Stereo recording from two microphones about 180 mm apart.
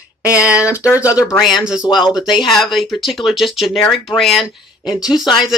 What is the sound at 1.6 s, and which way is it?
Speech, 5° right (ahead or behind).